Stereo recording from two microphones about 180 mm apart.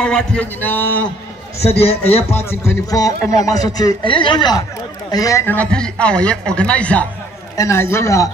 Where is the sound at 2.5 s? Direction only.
15° left (ahead or behind).